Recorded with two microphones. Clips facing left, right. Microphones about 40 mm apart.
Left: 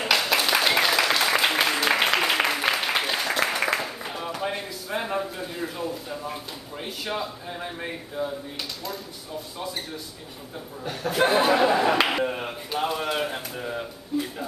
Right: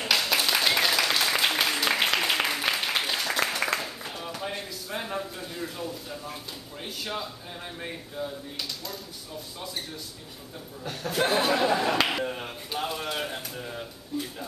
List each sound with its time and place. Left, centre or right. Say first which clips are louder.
0.0 s applause: left 3 dB; centre
10.8 s speech: left 4 dB; centre